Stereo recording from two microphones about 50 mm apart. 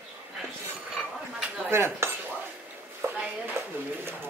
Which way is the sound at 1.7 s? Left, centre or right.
Right.